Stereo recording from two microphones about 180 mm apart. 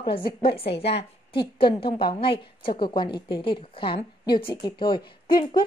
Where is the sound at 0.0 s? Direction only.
30° left (ahead or behind).